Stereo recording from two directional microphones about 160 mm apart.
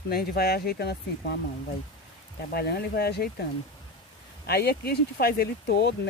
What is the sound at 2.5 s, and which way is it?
Speech, 80° left.